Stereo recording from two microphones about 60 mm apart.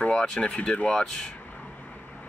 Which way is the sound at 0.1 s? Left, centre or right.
Centre.